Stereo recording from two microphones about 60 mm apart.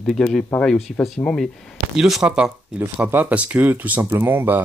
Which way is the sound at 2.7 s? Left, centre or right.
Right.